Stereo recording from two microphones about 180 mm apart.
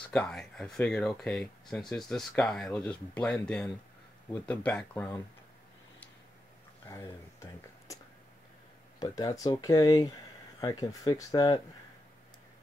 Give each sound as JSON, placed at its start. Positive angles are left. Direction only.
{"t": 0.1, "sound": "speech", "side_deg": 5}
{"t": 6.9, "sound": "speech", "side_deg": 15}
{"t": 9.0, "sound": "speech", "side_deg": 20}